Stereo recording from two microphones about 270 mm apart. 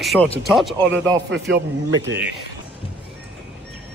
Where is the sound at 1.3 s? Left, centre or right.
Right.